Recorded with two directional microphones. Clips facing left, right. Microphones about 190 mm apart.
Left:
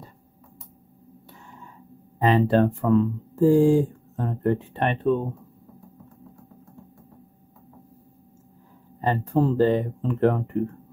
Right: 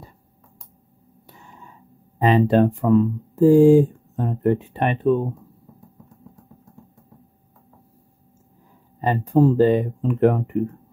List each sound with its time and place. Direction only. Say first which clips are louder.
2.1 s speech: right 3 dB; 15° right (ahead or behind)
9.0 s speech: right 5 dB; 15° right (ahead or behind)